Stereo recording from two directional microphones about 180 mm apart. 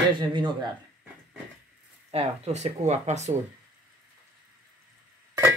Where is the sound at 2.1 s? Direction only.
35° right (ahead or behind).